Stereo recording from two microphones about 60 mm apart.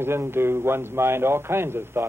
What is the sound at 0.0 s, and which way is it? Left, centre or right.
A man's voice, right.